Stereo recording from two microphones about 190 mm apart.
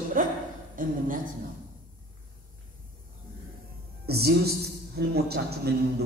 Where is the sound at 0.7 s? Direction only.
45° right (ahead or behind).